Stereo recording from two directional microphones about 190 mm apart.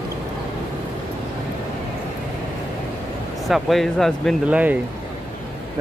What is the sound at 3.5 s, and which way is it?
Speech, centre (ahead or behind).